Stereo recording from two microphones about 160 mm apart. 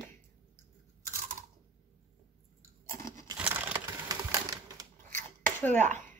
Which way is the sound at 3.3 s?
10° right (ahead or behind).